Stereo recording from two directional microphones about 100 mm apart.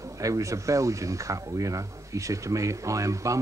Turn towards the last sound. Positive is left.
turn(degrees=-30)  # may be behind; listen again after turning